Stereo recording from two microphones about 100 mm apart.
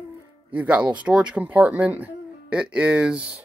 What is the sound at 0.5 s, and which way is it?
Speech, 15° right (ahead or behind).